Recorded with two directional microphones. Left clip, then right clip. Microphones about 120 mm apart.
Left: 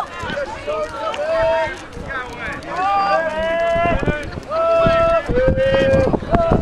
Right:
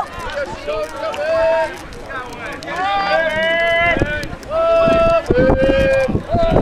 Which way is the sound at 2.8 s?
25° right (ahead or behind).